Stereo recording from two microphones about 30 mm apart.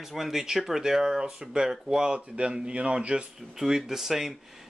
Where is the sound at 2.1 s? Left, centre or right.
Right.